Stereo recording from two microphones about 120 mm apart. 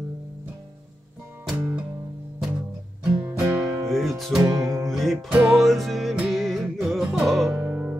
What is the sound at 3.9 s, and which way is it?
Music, centre (ahead or behind).